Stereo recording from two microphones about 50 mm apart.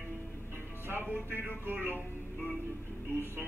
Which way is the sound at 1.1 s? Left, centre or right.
Right.